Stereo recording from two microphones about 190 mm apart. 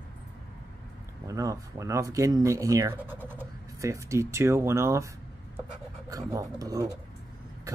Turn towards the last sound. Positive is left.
turn(degrees=-20)  # may be behind; listen again after turning